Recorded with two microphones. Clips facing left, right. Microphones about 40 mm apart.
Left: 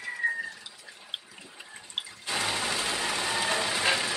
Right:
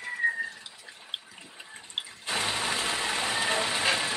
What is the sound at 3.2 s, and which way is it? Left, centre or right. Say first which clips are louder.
Train: right 1 dB; centre.